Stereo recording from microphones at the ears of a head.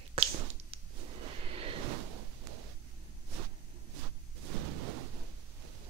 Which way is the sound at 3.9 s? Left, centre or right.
Right.